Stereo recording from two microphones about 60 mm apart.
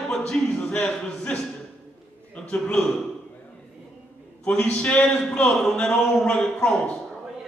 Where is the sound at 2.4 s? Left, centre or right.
Centre.